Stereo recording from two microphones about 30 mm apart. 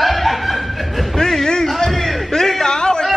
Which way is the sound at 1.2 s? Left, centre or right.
Centre.